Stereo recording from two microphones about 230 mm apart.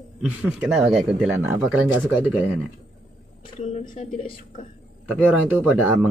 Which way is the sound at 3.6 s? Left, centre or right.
Left.